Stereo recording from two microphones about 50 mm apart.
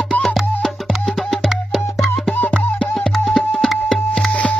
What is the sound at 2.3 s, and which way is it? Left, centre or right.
Music, left.